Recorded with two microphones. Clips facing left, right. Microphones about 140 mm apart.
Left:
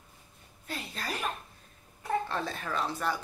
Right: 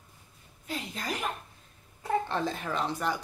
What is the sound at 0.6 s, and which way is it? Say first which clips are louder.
A woman's voice: right 2 dB; 15° right (ahead or behind).